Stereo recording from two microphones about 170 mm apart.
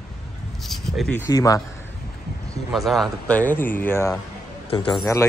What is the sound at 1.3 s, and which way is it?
Speech, 20° left (ahead or behind).